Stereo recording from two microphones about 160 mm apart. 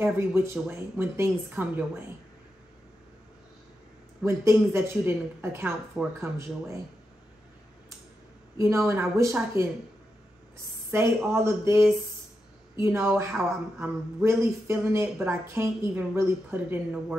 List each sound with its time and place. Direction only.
0.0 s a woman's voice: 15° right (ahead or behind)
4.3 s a woman's voice: 15° right (ahead or behind)
8.5 s speech: 20° right (ahead or behind)
10.9 s a woman's voice: 15° right (ahead or behind)